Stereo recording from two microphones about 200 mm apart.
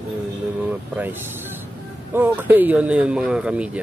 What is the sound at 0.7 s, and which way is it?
Speech, 10° right (ahead or behind).